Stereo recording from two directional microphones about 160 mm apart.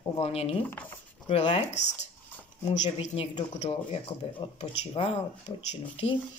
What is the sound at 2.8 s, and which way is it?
Speech, 45° left (ahead or behind).